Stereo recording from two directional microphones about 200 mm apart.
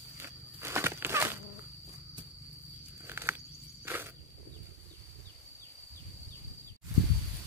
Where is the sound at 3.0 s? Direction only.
10° right (ahead or behind).